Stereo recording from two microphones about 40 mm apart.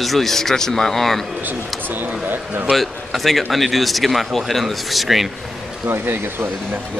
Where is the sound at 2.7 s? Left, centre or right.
Centre.